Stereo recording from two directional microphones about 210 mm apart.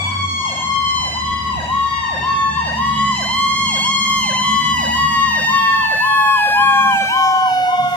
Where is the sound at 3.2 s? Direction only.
5° left (ahead or behind).